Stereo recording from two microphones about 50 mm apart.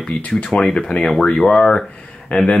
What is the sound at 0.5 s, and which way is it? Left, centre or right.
Speech, centre.